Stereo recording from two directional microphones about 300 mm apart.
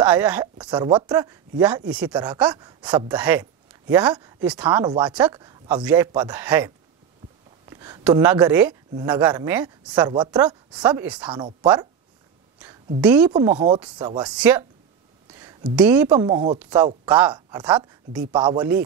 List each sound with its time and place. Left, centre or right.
0.0 s a woman's voice: centre
7.7 s a woman's voice: centre
11.2 s speech: centre
13.0 s a woman's voice: centre
13.3 s speech: centre
14.3 s a woman's voice: centre